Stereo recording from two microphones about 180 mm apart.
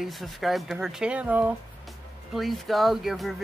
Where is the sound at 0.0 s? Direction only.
Centre (ahead or behind).